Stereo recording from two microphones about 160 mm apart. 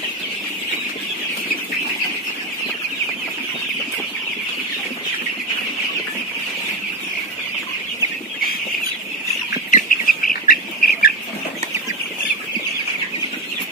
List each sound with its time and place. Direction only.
9.7 s bird: 55° left (ahead or behind)